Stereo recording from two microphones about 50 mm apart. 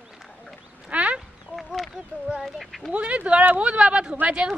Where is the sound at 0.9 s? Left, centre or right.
Right.